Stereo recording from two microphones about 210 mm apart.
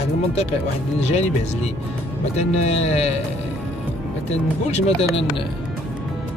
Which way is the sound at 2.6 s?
30° left (ahead or behind).